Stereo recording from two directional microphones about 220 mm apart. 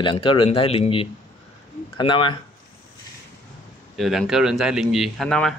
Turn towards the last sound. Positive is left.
turn(degrees=0)  # may be behind; listen again after turning